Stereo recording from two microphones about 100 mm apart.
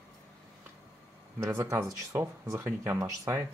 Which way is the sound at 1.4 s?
30° right (ahead or behind).